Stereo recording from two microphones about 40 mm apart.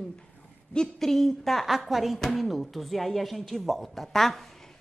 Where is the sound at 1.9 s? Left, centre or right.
Centre.